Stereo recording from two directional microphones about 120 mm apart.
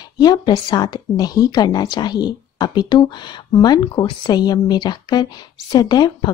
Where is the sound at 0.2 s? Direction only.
35° left (ahead or behind).